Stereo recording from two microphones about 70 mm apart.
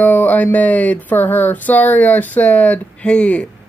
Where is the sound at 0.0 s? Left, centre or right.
Left.